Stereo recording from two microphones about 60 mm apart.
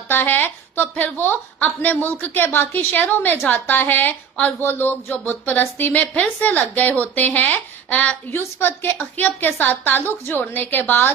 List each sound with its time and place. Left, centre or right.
0.1 s a woman's voice: left